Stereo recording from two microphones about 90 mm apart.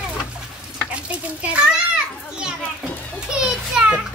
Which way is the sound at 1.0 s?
15° right (ahead or behind).